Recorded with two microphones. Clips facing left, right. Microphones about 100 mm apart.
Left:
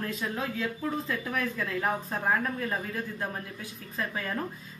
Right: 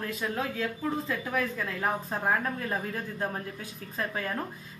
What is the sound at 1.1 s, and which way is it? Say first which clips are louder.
Speech: right 1 dB; 5° right (ahead or behind).